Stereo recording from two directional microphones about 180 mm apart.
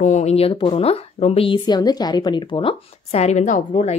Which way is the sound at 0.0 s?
40° left (ahead or behind).